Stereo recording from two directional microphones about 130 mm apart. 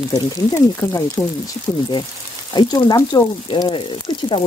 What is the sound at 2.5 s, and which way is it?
Speech, 35° left (ahead or behind).